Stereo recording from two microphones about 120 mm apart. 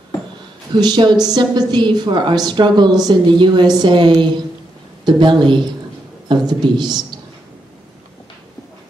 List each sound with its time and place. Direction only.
0.7 s a woman's voice: 40° right (ahead or behind)